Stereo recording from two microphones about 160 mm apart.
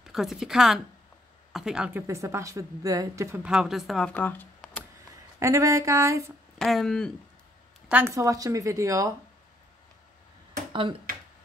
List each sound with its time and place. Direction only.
0.0 s speech: centre (ahead or behind)
2.0 s a woman's voice: 20° right (ahead or behind)
3.4 s speech: 5° right (ahead or behind)
5.4 s a woman's voice: 20° right (ahead or behind)
6.6 s speech: centre (ahead or behind)
7.9 s a woman's voice: 15° right (ahead or behind)
10.7 s speech: 30° right (ahead or behind)